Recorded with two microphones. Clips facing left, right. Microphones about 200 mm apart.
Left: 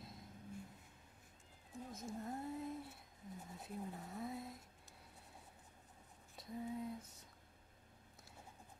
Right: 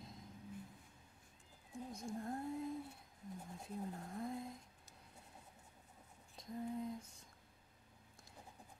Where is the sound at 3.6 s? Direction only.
5° left (ahead or behind).